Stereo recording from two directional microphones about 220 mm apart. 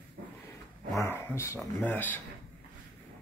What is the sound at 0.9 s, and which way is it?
Speech, 10° left (ahead or behind).